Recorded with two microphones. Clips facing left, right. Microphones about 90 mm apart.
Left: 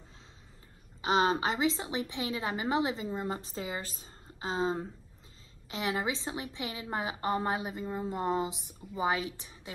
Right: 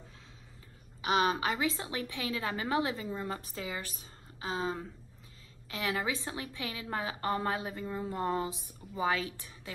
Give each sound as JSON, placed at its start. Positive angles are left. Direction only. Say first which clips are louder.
{"t": 1.0, "sound": "a woman's voice", "louder": "left 2 dB", "side_deg": 30}